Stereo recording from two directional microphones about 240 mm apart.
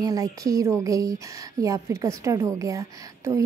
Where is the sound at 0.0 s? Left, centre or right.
Centre.